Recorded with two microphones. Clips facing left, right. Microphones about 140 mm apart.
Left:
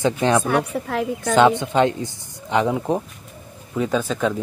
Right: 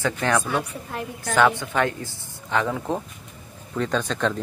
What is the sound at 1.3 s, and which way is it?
A woman's voice, 20° left (ahead or behind).